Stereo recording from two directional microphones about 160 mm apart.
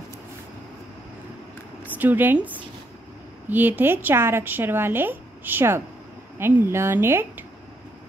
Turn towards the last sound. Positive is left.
turn(degrees=-15)  # may be behind; listen again after turning